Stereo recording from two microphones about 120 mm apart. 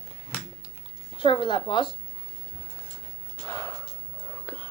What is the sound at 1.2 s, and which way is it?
Speech, 40° left (ahead or behind).